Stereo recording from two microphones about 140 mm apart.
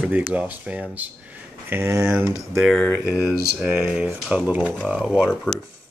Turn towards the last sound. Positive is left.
turn(degrees=-5)  # may be behind; listen again after turning